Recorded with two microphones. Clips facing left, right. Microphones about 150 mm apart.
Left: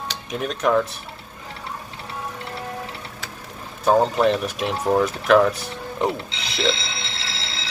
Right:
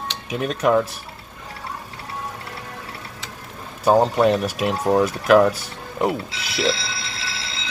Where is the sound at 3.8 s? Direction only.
5° right (ahead or behind).